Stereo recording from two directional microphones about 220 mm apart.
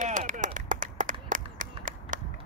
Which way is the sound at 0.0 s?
35° right (ahead or behind).